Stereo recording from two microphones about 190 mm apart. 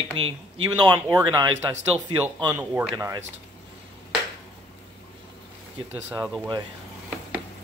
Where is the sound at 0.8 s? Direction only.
15° right (ahead or behind).